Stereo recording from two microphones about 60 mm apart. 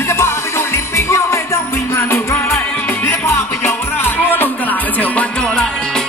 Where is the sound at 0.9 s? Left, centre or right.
Left.